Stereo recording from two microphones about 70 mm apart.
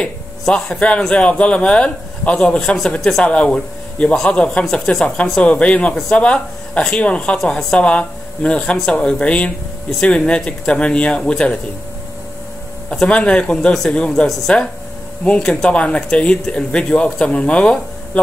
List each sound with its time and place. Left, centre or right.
0.0 s speech: centre
12.9 s speech: centre